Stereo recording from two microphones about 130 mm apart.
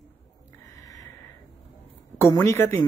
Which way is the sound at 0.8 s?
25° left (ahead or behind).